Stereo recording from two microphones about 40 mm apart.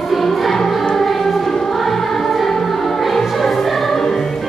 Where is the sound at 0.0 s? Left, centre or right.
Centre.